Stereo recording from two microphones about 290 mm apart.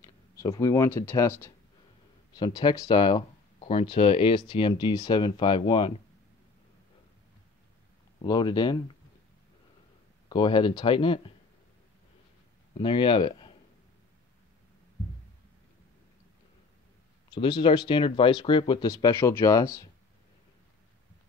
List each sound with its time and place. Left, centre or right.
0.0 s speech: centre
8.2 s speech: centre
10.3 s speech: centre
12.7 s speech: centre
17.3 s speech: centre